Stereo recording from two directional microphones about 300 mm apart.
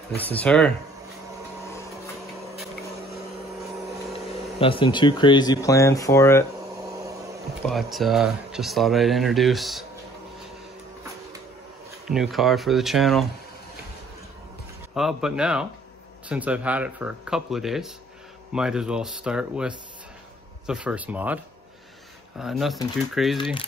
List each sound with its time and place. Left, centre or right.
0.1 s speech: centre
4.6 s speech: centre
6.9 s vacuum cleaner: centre
7.6 s speech: centre
12.1 s speech: centre
15.0 s speech: centre
22.4 s speech: centre